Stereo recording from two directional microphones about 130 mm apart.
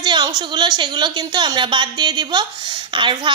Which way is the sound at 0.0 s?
35° right (ahead or behind).